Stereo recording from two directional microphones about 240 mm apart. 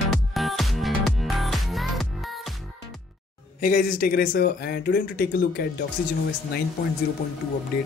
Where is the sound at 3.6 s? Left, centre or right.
Left.